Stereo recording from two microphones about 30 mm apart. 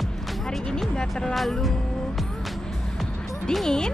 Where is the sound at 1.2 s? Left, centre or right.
Centre.